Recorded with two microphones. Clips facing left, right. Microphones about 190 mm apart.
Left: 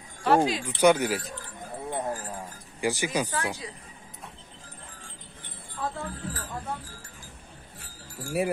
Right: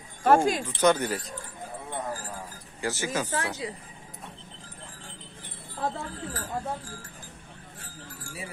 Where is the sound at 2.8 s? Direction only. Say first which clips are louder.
Left 3 dB; 15° left (ahead or behind).